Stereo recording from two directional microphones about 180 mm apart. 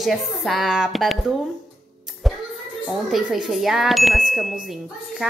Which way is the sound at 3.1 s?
5° right (ahead or behind).